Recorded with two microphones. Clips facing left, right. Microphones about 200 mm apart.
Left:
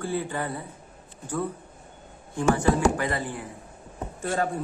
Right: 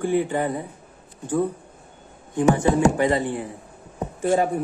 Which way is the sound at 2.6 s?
25° right (ahead or behind).